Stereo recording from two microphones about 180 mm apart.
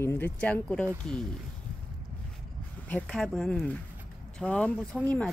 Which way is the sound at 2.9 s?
5° left (ahead or behind).